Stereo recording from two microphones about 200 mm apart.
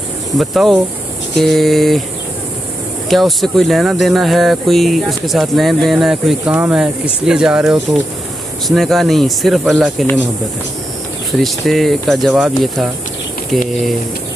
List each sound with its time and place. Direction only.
0.4 s speech: centre (ahead or behind)
3.1 s speech: centre (ahead or behind)
11.3 s speech: centre (ahead or behind)